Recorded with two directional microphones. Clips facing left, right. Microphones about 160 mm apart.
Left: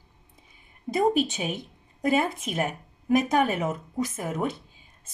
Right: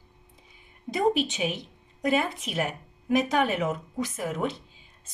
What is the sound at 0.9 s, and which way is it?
Speech, 45° left (ahead or behind).